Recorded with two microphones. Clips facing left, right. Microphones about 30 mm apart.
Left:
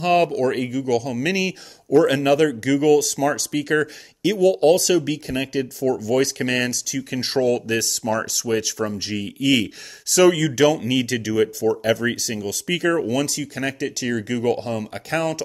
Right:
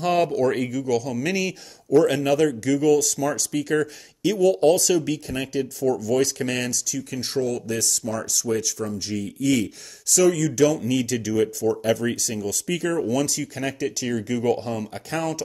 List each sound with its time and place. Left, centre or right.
0.0 s speech: centre